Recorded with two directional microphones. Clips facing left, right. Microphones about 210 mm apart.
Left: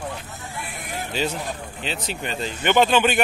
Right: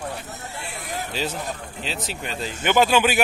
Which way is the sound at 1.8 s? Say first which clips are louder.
Left 2 dB; centre (ahead or behind).